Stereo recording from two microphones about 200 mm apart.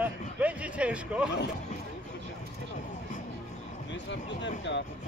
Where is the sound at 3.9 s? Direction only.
60° left (ahead or behind).